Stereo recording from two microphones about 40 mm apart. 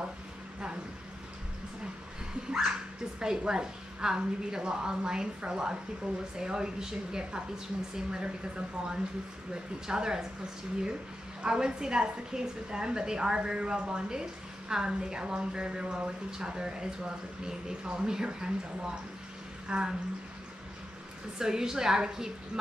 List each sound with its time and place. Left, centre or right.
3.2 s a woman's voice: centre
11.4 s a woman's voice: centre
21.4 s speech: centre